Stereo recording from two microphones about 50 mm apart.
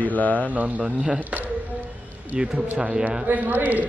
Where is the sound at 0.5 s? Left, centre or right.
Right.